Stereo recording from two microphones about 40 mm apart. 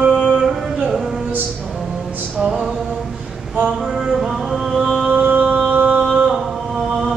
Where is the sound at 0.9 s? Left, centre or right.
Centre.